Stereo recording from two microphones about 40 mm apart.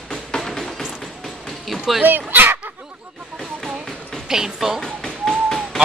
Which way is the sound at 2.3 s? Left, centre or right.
Right.